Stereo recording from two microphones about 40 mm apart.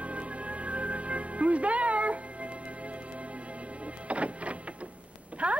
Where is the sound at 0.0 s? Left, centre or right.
Right.